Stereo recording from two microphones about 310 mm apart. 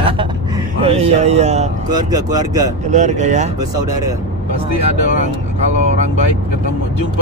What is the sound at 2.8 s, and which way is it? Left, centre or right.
Speech, right.